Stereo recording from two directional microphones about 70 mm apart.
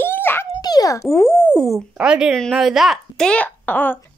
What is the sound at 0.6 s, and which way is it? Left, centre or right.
Speech, left.